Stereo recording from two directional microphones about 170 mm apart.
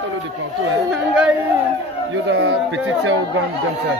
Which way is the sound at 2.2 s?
90° right.